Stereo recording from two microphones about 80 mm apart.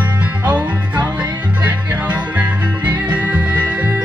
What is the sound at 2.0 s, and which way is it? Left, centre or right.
Music, centre.